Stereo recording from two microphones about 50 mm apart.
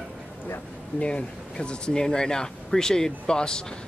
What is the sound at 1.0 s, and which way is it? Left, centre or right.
Speech, left.